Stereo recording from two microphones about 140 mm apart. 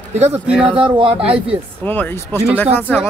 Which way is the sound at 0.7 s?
40° right (ahead or behind).